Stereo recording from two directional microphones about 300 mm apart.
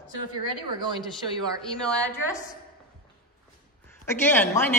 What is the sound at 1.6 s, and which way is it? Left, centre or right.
Speech, centre.